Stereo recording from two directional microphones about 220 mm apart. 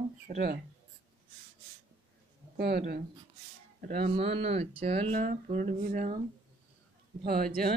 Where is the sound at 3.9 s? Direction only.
30° right (ahead or behind).